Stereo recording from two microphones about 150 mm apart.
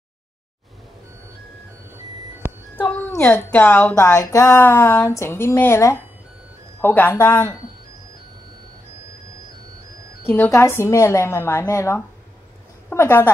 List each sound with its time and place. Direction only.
2.4 s a sound: 10° left (ahead or behind)
3.3 s speech: 10° left (ahead or behind)
10.2 s speech: 15° left (ahead or behind)